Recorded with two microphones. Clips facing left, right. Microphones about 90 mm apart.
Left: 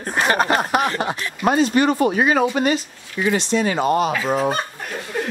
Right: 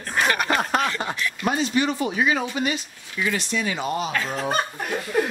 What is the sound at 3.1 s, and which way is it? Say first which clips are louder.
Speech: left 6 dB; 25° left (ahead or behind).